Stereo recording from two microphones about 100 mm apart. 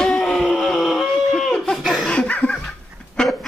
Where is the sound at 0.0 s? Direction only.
5° left (ahead or behind).